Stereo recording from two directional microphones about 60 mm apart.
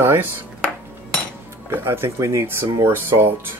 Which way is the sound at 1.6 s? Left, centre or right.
Right.